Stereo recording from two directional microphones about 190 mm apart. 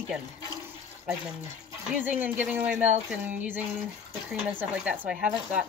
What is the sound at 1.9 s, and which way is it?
Speech, 10° right (ahead or behind).